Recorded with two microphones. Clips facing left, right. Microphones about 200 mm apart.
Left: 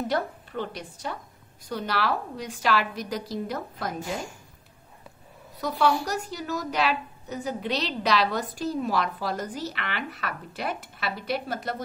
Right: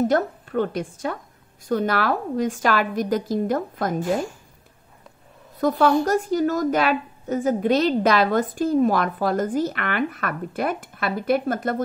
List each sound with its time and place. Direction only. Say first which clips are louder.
0.0 s a woman's voice: right 7 dB; 50° right (ahead or behind)
5.6 s a woman's voice: right 6 dB; 50° right (ahead or behind)